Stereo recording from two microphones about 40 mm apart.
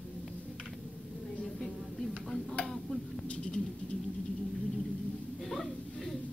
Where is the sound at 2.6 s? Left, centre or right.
Centre.